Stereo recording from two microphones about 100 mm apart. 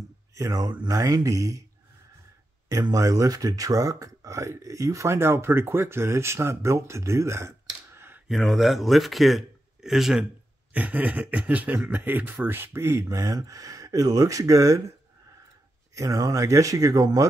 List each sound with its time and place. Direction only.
0.3 s speech: 35° right (ahead or behind)
2.8 s speech: 35° right (ahead or behind)
8.3 s speech: centre (ahead or behind)
10.7 s speech: 15° right (ahead or behind); by 14.8 s 35° right (ahead or behind)
15.9 s speech: 35° right (ahead or behind)